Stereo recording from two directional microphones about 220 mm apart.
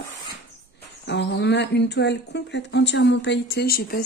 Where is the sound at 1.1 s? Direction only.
50° left (ahead or behind).